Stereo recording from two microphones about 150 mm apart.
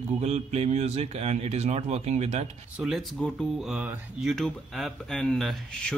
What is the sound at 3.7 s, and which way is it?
Speech, 10° right (ahead or behind).